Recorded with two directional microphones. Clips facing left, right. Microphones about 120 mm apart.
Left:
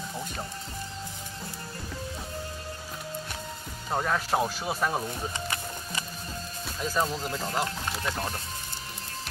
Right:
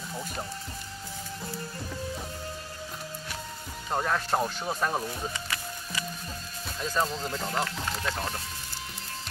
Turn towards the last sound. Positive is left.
turn(degrees=5)  # may be behind; listen again after turning